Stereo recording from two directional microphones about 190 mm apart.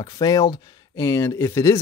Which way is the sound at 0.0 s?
20° left (ahead or behind).